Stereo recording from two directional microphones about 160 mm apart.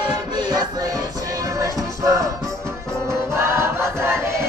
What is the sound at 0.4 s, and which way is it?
Music, 25° right (ahead or behind).